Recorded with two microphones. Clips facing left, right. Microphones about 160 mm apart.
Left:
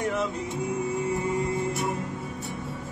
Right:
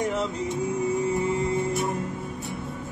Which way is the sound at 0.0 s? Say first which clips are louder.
Right 1 dB; 15° right (ahead or behind).